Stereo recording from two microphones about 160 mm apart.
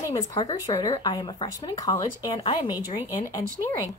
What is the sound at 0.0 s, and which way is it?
A woman's voice, 20° left (ahead or behind).